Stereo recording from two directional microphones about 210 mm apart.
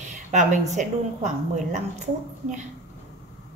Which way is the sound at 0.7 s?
35° right (ahead or behind).